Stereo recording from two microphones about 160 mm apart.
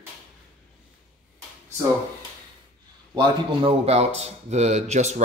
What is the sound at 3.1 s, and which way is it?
Speech, 35° right (ahead or behind).